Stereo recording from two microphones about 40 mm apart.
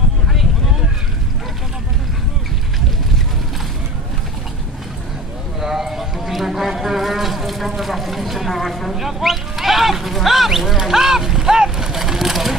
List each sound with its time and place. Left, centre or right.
0.3 s vehicle: centre
5.6 s a sound: centre
10.8 s vehicle: centre